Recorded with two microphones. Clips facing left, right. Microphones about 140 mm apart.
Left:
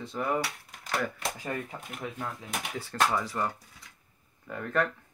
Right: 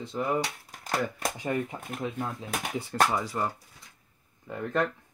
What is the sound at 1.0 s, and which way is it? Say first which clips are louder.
Speech: right 3 dB; 25° right (ahead or behind).